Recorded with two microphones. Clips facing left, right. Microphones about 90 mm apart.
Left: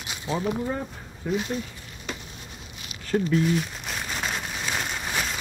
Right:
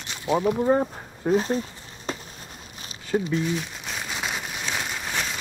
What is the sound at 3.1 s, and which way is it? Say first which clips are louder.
Crumpling: left 2 dB; 10° right (ahead or behind).